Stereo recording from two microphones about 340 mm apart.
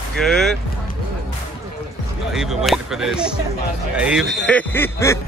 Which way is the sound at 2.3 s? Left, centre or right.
Centre.